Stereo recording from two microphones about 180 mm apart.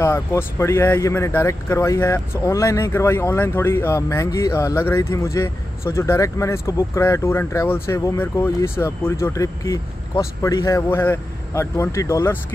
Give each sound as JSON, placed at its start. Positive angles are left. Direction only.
{"t": 0.0, "sound": "speech", "side_deg": 15}